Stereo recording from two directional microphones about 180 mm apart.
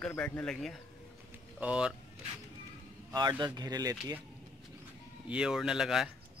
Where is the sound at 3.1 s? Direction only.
25° right (ahead or behind).